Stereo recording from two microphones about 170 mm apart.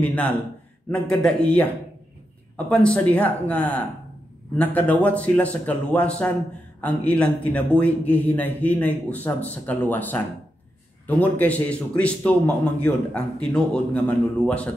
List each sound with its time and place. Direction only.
0.0 s a man's voice: 10° left (ahead or behind)